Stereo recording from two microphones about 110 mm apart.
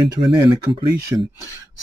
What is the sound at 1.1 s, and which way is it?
Speech, 35° right (ahead or behind).